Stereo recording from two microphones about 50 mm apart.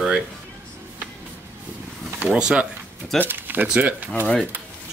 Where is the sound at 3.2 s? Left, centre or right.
Right.